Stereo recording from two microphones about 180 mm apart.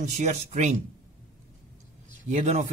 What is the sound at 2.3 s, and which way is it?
Speech, 40° right (ahead or behind).